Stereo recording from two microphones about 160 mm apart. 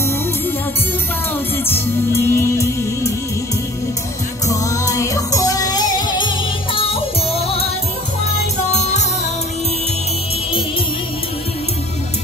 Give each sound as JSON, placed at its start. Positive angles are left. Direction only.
{"t": 1.6, "sound": "music", "side_deg": 15}
{"t": 4.5, "sound": "music", "side_deg": 20}
{"t": 8.7, "sound": "music", "side_deg": 45}